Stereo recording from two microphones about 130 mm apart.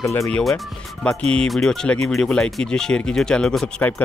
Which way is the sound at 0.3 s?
Centre (ahead or behind).